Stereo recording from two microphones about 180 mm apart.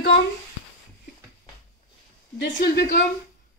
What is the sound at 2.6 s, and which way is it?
Speech, 55° left (ahead or behind).